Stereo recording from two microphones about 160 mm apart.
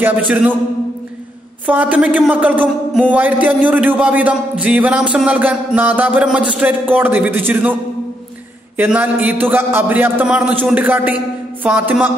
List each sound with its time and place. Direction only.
0.0 s speech: 10° right (ahead or behind)
1.7 s speech: 10° right (ahead or behind)
8.7 s speech: 10° right (ahead or behind)